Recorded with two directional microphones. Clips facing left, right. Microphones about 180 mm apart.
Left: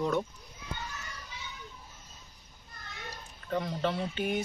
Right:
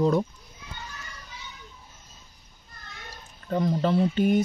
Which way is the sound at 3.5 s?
40° right (ahead or behind).